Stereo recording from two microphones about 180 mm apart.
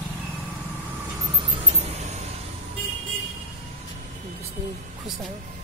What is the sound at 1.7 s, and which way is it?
Vehicle, 35° right (ahead or behind).